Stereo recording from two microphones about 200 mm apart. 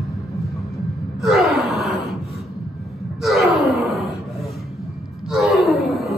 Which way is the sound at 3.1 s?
Centre (ahead or behind).